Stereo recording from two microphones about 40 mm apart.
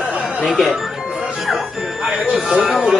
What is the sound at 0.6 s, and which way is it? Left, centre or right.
Speech, centre.